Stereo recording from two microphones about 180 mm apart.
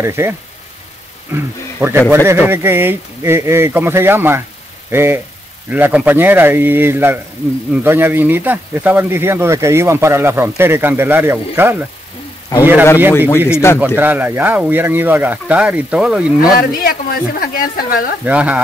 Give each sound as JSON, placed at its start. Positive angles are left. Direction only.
{"t": 0.0, "sound": "speech", "side_deg": -15}
{"t": 13.5, "sound": "speech", "side_deg": 15}
{"t": 13.7, "sound": "speech", "side_deg": -10}
{"t": 16.5, "sound": "speech", "side_deg": 55}
{"t": 18.2, "sound": "speech", "side_deg": -10}